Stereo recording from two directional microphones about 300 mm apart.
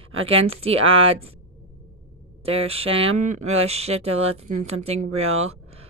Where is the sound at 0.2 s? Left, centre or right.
Centre.